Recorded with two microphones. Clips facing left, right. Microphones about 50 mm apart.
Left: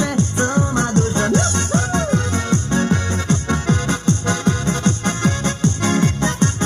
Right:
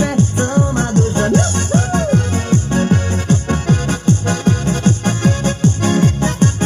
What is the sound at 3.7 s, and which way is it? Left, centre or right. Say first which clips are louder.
Music: right 3 dB; left.